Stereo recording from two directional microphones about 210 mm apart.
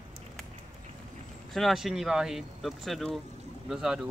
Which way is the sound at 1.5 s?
Centre (ahead or behind).